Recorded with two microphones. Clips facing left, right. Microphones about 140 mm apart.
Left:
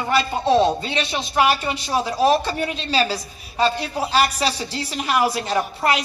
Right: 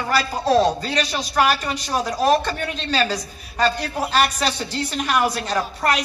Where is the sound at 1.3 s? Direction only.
5° left (ahead or behind).